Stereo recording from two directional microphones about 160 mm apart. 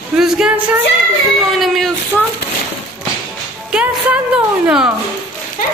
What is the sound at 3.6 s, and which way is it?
Music, 5° right (ahead or behind).